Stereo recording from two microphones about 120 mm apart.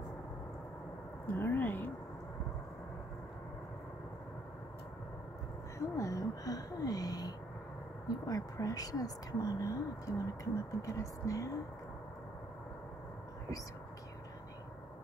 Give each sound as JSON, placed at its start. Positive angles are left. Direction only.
{"t": 1.2, "sound": "speech", "side_deg": 20}
{"t": 5.8, "sound": "a sound", "side_deg": 30}
{"t": 8.3, "sound": "speech", "side_deg": 30}